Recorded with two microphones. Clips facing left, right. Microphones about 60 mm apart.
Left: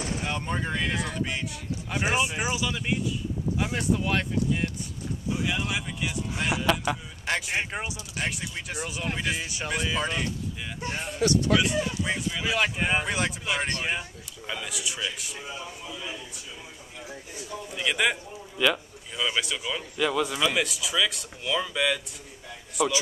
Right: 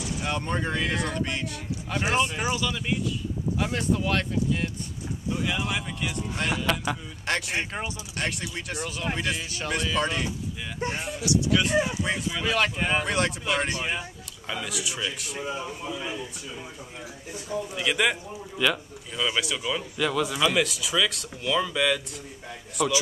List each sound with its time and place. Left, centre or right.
0.2 s speech: centre
9.4 s speech: centre
9.9 s speech: centre
10.8 s speech: right
11.1 s speech: left
11.7 s speech: centre
12.0 s speech: centre
15.3 s speech: right
17.7 s speech: centre